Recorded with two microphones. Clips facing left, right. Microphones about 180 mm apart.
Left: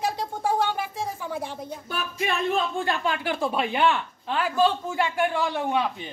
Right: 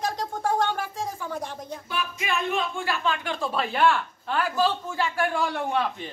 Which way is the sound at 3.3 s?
15° left (ahead or behind).